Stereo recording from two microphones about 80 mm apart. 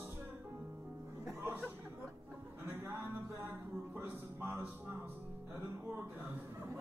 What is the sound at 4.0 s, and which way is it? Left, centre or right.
Music, right.